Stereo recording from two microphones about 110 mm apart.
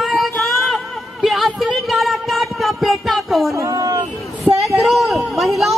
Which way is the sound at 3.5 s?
30° right (ahead or behind).